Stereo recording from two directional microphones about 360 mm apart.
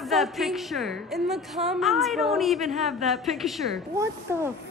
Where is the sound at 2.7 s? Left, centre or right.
Centre.